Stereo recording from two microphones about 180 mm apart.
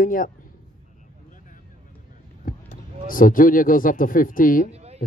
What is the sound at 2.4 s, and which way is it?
Speech, 50° left (ahead or behind).